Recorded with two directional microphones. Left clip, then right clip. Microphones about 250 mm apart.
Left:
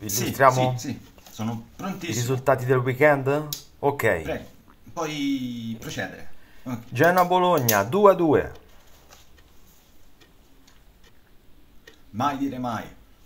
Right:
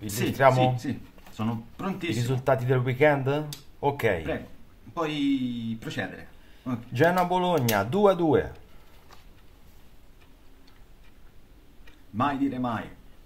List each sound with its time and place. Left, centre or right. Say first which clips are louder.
0.1 s speech: left 2 dB; centre
12.4 s speech: even; centre